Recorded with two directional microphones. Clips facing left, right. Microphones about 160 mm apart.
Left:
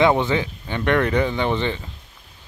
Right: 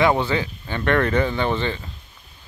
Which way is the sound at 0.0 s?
20° left (ahead or behind).